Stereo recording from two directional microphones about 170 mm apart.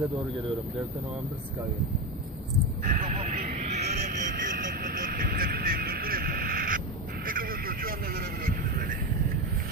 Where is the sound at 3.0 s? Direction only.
50° right (ahead or behind).